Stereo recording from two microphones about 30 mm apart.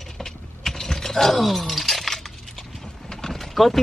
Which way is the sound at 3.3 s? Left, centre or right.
Centre.